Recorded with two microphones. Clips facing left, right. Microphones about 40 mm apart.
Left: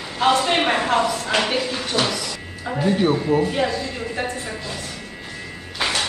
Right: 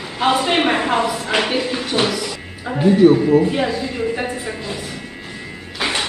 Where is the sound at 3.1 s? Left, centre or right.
Centre.